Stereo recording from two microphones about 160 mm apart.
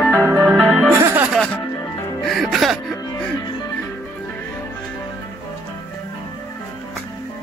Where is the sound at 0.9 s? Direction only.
20° right (ahead or behind).